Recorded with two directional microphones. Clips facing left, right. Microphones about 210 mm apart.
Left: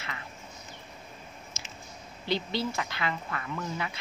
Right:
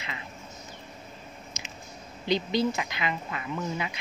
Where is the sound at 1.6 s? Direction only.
15° right (ahead or behind).